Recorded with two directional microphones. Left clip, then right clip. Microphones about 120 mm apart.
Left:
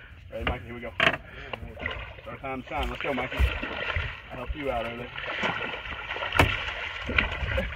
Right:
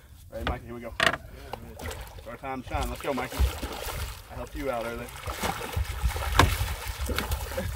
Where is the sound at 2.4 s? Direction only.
40° left (ahead or behind).